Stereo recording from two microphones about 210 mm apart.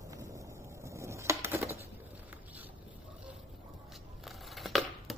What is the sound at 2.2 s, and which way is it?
Boat, 10° right (ahead or behind).